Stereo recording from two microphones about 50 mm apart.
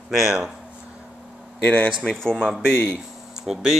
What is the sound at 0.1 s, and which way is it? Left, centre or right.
Speech, centre.